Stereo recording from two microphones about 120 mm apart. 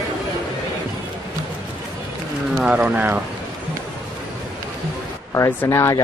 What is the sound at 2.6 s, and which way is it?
Speech, 10° right (ahead or behind).